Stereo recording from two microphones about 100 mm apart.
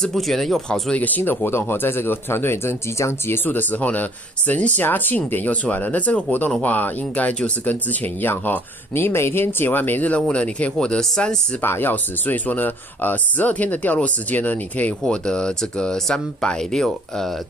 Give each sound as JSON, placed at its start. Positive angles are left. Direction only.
{"t": 0.0, "sound": "speech", "side_deg": 5}
{"t": 1.0, "sound": "speech", "side_deg": 20}
{"t": 11.6, "sound": "speech", "side_deg": 20}